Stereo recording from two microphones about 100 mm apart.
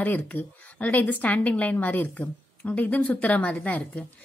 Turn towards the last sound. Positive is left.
turn(degrees=15)  # may be behind; listen again after turning